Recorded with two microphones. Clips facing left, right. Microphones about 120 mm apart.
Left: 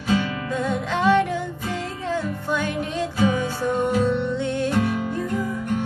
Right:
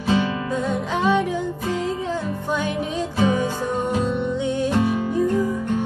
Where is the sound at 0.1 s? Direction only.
20° right (ahead or behind).